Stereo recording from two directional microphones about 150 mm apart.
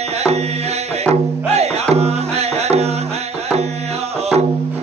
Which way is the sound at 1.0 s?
45° right (ahead or behind).